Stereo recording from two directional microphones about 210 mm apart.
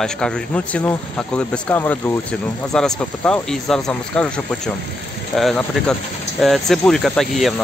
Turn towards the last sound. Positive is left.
turn(degrees=0)  # may be behind; listen again after turning